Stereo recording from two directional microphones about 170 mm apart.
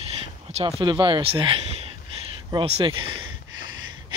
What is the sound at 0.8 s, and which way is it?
Speech, 30° right (ahead or behind).